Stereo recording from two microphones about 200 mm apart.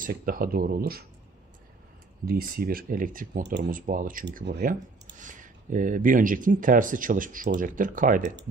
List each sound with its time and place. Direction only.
0.0 s speech: 45° right (ahead or behind)
2.2 s speech: 50° right (ahead or behind)
3.4 s speech: 60° right (ahead or behind)
3.8 s speech: 40° right (ahead or behind)